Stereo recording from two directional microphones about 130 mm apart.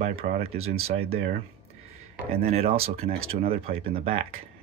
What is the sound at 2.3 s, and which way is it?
Speech, 50° right (ahead or behind).